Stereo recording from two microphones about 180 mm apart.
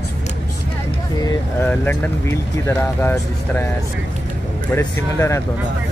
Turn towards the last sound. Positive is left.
turn(degrees=15)  # may be behind; listen again after turning